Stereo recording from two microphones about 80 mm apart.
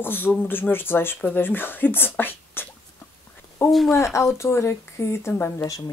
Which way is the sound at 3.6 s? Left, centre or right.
Centre.